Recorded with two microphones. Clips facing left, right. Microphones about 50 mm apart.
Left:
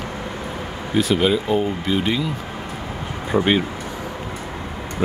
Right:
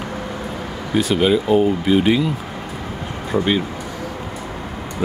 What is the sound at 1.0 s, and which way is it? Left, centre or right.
Speech, centre.